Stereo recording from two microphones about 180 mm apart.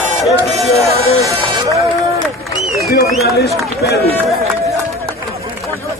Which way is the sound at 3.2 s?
65° left (ahead or behind).